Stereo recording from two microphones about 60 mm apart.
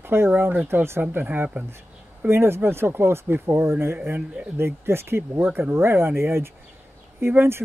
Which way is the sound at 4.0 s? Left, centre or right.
Right.